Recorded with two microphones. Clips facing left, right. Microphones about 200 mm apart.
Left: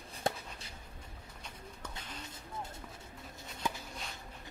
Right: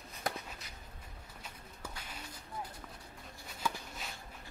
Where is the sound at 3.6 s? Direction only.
20° left (ahead or behind).